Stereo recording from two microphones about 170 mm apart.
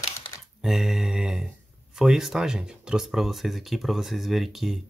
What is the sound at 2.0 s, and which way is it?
Speech, centre (ahead or behind).